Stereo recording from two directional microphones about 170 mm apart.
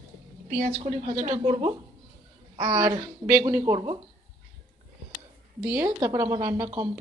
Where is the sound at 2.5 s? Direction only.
25° right (ahead or behind).